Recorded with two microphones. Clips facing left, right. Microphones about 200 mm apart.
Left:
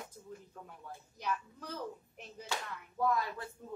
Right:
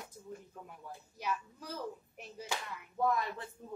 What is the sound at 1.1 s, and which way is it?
Speech, 5° right (ahead or behind).